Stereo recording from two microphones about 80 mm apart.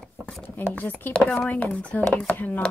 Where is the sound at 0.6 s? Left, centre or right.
Left.